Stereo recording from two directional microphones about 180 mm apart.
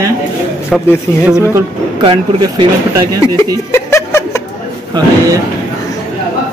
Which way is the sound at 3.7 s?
15° left (ahead or behind).